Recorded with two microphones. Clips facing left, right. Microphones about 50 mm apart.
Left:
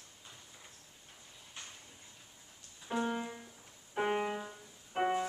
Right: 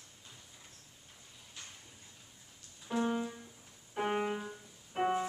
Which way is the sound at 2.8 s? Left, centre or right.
Centre.